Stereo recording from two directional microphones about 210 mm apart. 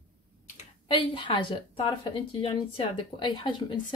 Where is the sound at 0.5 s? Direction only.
25° left (ahead or behind).